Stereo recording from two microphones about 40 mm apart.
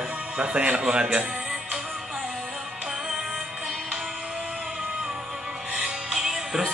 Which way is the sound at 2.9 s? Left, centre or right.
Centre.